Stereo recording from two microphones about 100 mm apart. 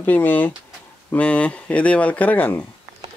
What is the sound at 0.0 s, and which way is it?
Speech, 15° left (ahead or behind).